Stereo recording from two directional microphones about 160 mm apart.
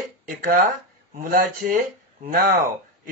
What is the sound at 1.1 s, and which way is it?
Speech, 60° right (ahead or behind).